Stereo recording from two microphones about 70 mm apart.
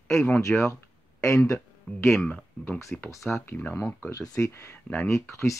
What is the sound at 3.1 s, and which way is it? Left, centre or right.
Speech, left.